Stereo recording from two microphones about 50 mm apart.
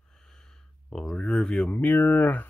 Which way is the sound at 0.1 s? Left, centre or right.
Centre.